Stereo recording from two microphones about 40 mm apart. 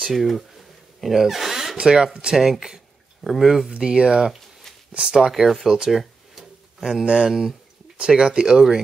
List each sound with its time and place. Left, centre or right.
0.1 s a sound: centre
2.3 s speech: centre
3.6 s speech: centre
5.2 s speech: centre
5.9 s a sound: centre
6.8 s speech: centre
8.0 s speech: right